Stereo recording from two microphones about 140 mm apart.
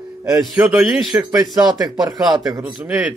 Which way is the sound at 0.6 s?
10° right (ahead or behind).